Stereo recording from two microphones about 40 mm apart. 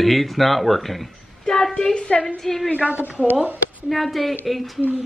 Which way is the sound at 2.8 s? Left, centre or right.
Right.